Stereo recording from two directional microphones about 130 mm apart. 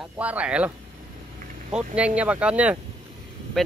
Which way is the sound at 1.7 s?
10° right (ahead or behind).